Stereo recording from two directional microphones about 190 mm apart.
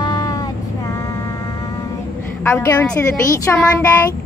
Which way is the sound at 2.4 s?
15° left (ahead or behind).